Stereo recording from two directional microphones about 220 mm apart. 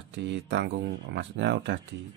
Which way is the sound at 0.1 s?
55° right (ahead or behind).